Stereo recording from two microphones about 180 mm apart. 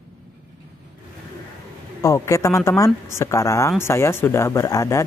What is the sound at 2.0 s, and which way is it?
Speech, 15° left (ahead or behind).